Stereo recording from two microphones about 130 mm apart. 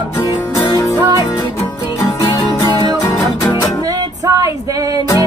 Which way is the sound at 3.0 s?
30° left (ahead or behind).